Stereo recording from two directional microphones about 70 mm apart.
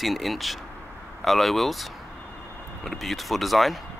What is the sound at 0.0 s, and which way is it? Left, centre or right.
Speech, centre.